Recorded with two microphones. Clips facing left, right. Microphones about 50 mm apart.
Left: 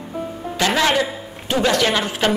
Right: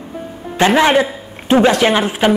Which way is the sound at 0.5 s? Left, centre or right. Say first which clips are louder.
Right 6 dB; right.